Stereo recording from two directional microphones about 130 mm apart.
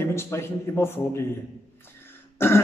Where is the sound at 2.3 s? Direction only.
20° left (ahead or behind).